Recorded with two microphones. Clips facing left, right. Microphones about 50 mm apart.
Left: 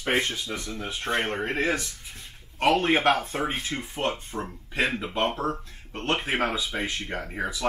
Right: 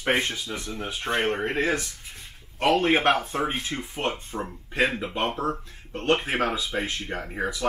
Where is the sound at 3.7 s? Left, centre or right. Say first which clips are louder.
Even; centre.